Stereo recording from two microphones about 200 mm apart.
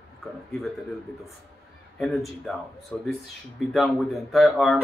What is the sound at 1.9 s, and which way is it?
Speech, centre (ahead or behind).